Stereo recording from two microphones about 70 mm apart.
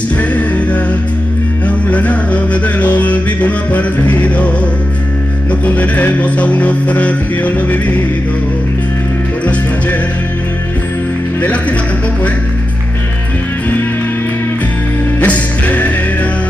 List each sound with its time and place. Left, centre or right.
1.9 s music: left
5.8 s music: left
15.1 s music: left